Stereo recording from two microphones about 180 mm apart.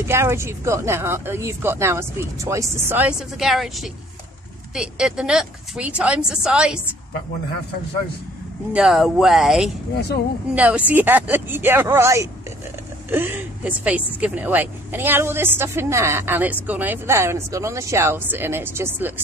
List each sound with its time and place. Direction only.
0.1 s a woman's voice: 15° right (ahead or behind)
8.7 s a woman's voice: centre (ahead or behind)
9.9 s speech: 65° left (ahead or behind)
10.5 s speech: 10° right (ahead or behind)